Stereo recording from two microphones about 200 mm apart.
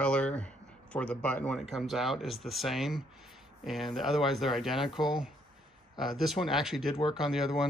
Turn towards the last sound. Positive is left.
turn(degrees=0)  # may be behind; listen again after turning